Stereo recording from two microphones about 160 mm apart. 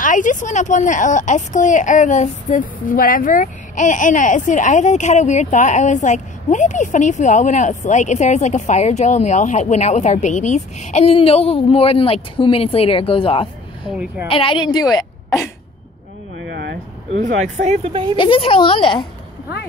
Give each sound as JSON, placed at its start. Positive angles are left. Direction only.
{"t": 0.0, "sound": "a woman's voice", "side_deg": 55}
{"t": 13.8, "sound": "a woman's voice", "side_deg": -5}
{"t": 14.2, "sound": "a woman's voice", "side_deg": 35}
{"t": 16.4, "sound": "a sound", "side_deg": -90}
{"t": 17.2, "sound": "speech", "side_deg": -50}
{"t": 18.1, "sound": "a woman's voice", "side_deg": 30}